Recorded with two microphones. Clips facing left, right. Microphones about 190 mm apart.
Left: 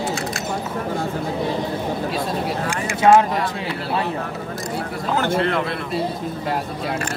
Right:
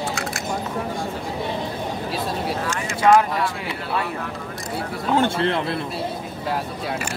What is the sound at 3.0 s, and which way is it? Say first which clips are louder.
Speech: left 2 dB; 25° left (ahead or behind).